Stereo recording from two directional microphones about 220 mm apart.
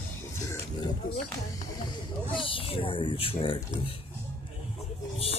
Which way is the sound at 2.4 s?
25° left (ahead or behind).